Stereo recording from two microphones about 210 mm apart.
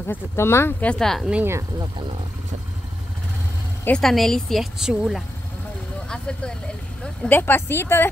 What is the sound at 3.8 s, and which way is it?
Speech, 5° left (ahead or behind).